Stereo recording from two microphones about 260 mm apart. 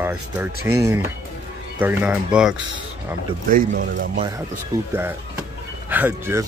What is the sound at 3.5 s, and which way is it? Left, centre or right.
Speech, right.